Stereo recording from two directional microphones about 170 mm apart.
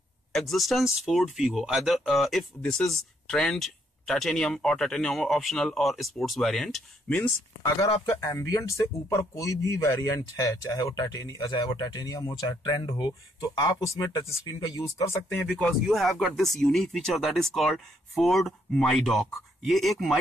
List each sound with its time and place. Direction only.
0.3 s speech: centre (ahead or behind)
7.9 s speech: 25° left (ahead or behind); by 20.2 s centre (ahead or behind)